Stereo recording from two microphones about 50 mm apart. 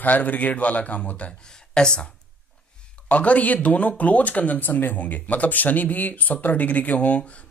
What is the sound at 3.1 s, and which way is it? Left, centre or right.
Speech, left.